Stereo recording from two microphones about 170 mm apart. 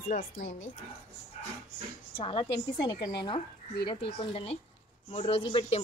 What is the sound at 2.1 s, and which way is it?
A woman's voice, 30° left (ahead or behind).